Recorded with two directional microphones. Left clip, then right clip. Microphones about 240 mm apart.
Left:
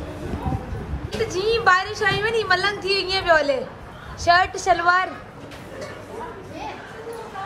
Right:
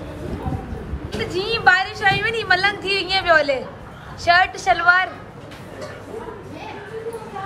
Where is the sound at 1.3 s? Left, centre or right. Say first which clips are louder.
Right 2 dB; centre.